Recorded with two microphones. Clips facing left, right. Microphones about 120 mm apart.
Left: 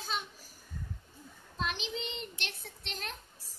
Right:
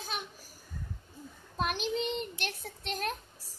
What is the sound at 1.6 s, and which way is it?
Child singing, 55° right (ahead or behind).